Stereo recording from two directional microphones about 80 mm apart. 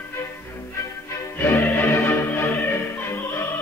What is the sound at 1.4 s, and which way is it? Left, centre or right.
Music, left.